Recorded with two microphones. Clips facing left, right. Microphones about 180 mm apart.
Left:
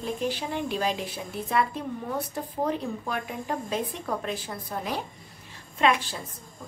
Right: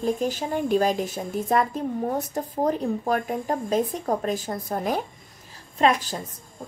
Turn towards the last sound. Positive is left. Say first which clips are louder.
# right 3 dB
turn(degrees=-40)  # may be behind; listen again after turning